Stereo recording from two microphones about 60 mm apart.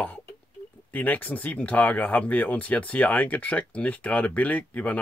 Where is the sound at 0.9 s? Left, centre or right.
Left.